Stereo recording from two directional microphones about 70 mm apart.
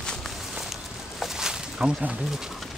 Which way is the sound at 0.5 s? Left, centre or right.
Centre.